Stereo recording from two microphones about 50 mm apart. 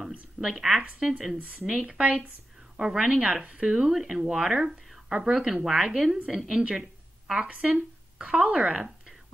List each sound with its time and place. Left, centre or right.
0.4 s speech: centre
6.7 s a sound: centre
7.7 s speech: centre